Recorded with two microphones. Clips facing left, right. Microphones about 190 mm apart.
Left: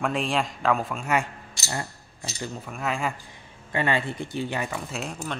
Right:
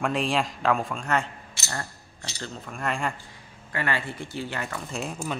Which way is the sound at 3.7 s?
20° left (ahead or behind).